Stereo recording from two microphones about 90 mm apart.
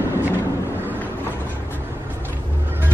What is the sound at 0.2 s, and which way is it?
Vehicle, 25° right (ahead or behind).